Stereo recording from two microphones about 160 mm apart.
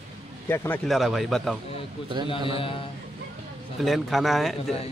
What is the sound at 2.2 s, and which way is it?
Speech, 35° left (ahead or behind).